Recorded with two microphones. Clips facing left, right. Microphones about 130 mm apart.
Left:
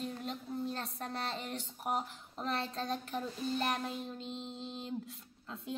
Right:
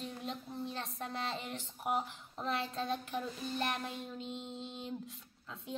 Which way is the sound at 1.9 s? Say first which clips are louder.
Right 1 dB; centre (ahead or behind).